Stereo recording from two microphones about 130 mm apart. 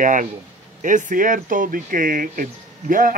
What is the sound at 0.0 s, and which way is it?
A man's voice, 90° right.